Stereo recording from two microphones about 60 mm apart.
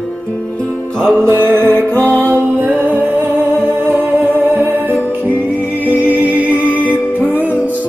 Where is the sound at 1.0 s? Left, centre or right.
Right.